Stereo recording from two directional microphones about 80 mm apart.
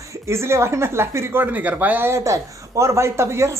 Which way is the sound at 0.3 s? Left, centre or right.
Right.